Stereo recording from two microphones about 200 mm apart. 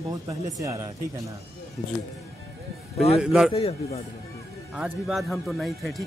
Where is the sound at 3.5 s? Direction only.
30° left (ahead or behind).